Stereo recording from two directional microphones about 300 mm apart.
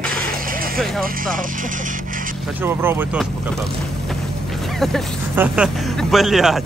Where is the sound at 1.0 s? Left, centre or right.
Right.